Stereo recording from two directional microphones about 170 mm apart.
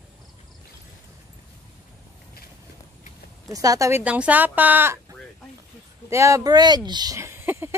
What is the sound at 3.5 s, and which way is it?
Speech, 20° right (ahead or behind).